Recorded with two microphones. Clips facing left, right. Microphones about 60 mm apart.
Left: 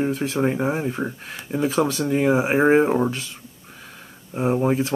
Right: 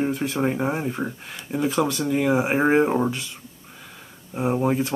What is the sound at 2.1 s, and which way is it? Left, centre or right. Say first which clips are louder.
Speech: left 2 dB; centre.